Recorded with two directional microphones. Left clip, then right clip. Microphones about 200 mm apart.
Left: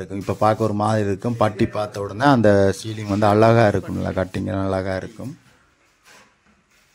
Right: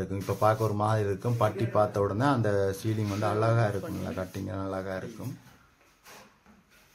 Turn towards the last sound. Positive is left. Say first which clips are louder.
# left 11 dB
turn(degrees=40)  # may be behind; listen again after turning